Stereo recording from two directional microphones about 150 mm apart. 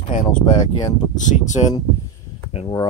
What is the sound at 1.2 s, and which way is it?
Speech, 55° left (ahead or behind).